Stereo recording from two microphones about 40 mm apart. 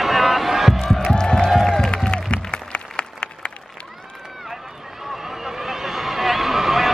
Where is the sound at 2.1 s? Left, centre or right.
Left.